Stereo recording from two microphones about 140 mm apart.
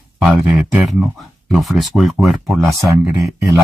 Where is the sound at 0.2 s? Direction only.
5° right (ahead or behind).